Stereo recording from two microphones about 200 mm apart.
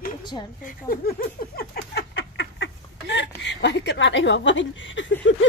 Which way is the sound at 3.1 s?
60° left (ahead or behind).